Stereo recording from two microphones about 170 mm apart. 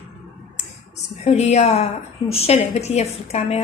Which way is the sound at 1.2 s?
40° left (ahead or behind).